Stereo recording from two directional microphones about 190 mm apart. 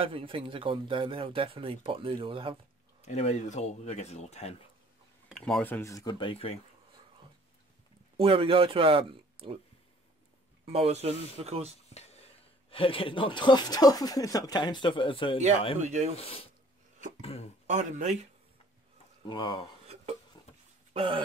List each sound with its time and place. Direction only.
0.0 s speech: 30° right (ahead or behind)
3.0 s speech: 35° left (ahead or behind)
5.3 s speech: 5° left (ahead or behind); by 6.6 s 30° left (ahead or behind)
8.2 s speech: 30° right (ahead or behind)
10.6 s speech: 30° right (ahead or behind)
11.9 s a sound: 35° left (ahead or behind)
12.7 s speech: 30° left (ahead or behind)
15.8 s speech: 35° right (ahead or behind)
16.2 s speech: 30° left (ahead or behind)
17.2 s a sound: 30° left (ahead or behind)
17.6 s speech: 40° right (ahead or behind)
19.2 s speech: 25° left (ahead or behind)
20.9 s dog: 25° right (ahead or behind)